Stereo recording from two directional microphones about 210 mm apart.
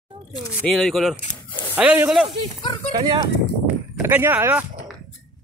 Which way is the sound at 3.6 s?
10° right (ahead or behind).